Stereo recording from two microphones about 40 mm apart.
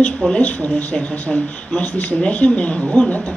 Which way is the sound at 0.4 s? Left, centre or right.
Left.